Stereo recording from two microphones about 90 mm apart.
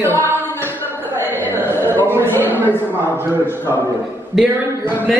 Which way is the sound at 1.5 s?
25° right (ahead or behind).